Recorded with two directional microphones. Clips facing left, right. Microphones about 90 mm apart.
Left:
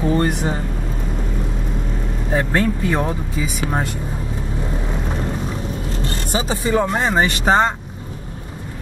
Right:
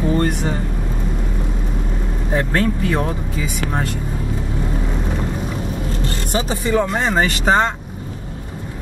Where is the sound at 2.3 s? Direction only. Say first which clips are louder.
Even; 20° left (ahead or behind).